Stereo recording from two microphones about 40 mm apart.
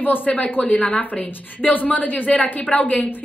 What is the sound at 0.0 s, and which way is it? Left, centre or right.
A woman's voice, left.